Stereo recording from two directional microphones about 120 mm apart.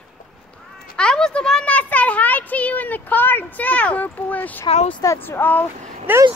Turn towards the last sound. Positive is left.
turn(degrees=-15)  # may be behind; listen again after turning